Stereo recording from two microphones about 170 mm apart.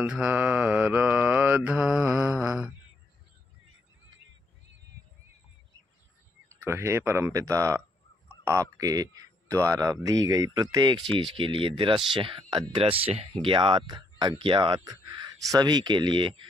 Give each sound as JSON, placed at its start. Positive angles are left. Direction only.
{"t": 0.0, "sound": "mantra", "side_deg": -5}
{"t": 6.5, "sound": "mantra", "side_deg": -15}
{"t": 8.5, "sound": "speech", "side_deg": -20}